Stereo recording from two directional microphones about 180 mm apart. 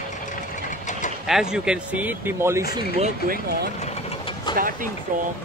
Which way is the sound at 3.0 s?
55° right (ahead or behind).